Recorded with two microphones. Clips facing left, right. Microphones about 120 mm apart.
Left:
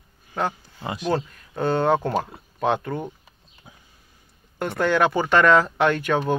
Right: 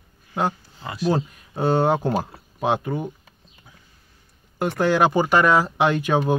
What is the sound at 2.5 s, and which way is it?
Speech, 15° right (ahead or behind).